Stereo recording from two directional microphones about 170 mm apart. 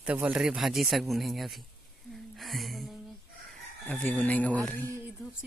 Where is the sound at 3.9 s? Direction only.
10° left (ahead or behind).